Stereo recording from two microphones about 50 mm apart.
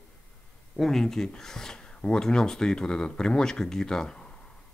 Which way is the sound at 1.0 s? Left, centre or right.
Centre.